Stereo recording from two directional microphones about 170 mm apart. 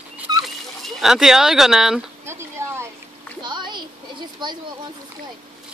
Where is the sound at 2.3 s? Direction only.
15° right (ahead or behind).